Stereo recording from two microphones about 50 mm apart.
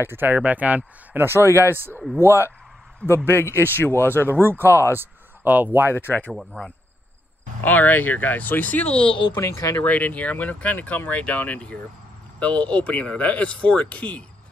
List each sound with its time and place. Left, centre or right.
0.0 s speech: right
0.4 s speech: right
1.1 s speech: right
3.3 s speech: left
4.4 s speech: right
4.6 s speech: left
4.9 s speech: right
5.9 s speech: left
6.5 s speech: left
9.4 s speech: left
9.8 s speech: left